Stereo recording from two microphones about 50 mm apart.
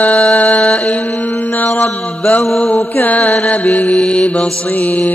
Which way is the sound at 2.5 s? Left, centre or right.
Left.